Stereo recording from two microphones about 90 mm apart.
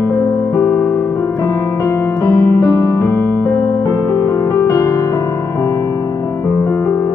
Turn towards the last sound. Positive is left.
turn(degrees=30)  # may be behind; listen again after turning